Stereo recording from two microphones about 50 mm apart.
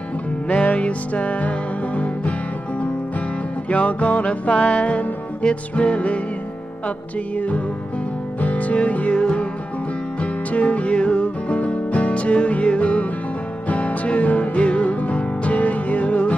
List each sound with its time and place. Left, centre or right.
0.5 s music: left
3.6 s music: left
7.3 s music: left